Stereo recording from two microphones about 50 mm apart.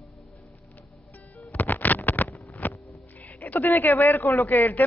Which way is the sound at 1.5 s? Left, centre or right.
Left.